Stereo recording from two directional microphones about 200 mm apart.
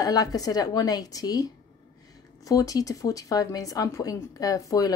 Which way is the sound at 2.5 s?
15° left (ahead or behind).